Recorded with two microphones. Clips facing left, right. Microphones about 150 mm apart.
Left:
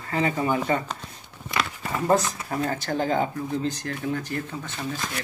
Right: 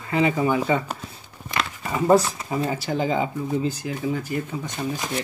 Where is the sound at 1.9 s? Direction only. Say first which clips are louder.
Right 4 dB; 10° right (ahead or behind).